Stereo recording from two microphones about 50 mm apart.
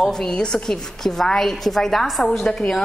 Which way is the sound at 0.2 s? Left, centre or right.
Centre.